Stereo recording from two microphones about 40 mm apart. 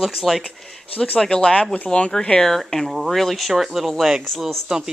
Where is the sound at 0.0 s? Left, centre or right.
Centre.